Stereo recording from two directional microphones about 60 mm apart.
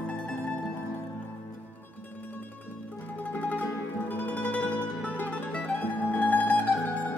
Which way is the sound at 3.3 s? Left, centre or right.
Left.